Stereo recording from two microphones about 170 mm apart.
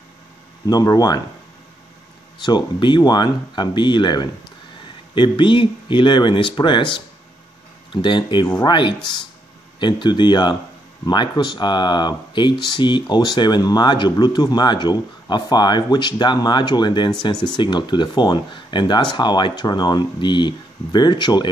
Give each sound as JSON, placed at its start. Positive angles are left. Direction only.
{"t": 0.7, "sound": "speech", "side_deg": 25}
{"t": 2.4, "sound": "speech", "side_deg": 25}